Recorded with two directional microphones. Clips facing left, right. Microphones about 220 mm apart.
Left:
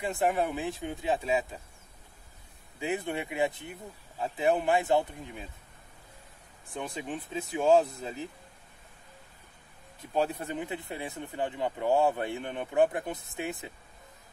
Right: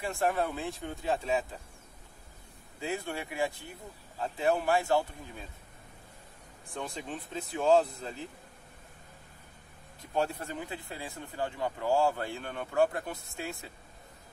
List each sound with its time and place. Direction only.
0.0 s speech: 15° left (ahead or behind)
2.8 s speech: 20° left (ahead or behind)
6.8 s speech: 10° left (ahead or behind)
10.1 s speech: 20° left (ahead or behind)